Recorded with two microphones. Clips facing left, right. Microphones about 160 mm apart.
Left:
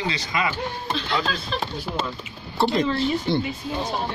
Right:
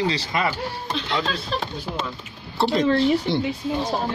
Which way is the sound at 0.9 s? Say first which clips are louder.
Right 1 dB; 25° right (ahead or behind).